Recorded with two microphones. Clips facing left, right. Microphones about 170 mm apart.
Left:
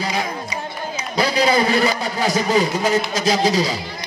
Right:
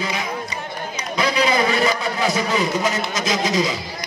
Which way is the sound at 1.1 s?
35° left (ahead or behind).